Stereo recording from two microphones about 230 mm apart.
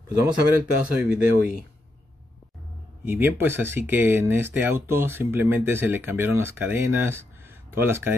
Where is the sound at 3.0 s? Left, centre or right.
Centre.